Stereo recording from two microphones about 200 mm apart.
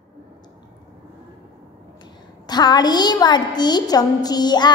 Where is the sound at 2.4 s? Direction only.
20° left (ahead or behind).